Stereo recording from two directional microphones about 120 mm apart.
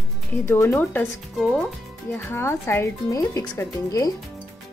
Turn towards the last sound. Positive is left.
turn(degrees=30)  # may be behind; listen again after turning